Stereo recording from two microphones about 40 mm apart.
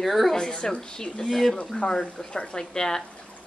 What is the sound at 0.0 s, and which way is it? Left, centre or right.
Speech, centre.